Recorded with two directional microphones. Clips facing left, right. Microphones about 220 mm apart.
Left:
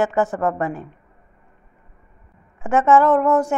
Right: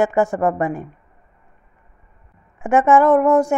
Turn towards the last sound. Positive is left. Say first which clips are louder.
# right 3 dB
turn(degrees=-10)  # may be behind; listen again after turning